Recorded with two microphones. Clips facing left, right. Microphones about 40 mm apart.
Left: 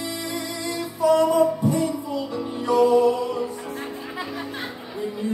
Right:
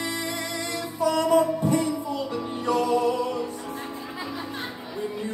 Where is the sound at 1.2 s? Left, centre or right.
Right.